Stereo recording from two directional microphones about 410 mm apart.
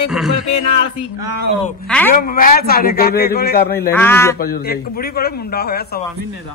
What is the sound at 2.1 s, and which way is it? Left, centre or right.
A man's voice, left.